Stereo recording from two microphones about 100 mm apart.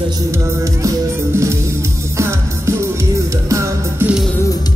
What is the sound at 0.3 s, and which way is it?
Music, 35° right (ahead or behind).